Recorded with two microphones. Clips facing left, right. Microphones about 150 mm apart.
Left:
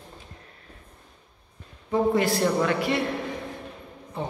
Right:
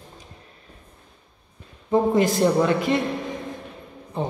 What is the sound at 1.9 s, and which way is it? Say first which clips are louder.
A man's voice: right 3 dB; 20° right (ahead or behind).